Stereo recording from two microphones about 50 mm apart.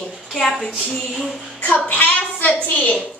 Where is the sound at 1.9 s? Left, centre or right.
Left.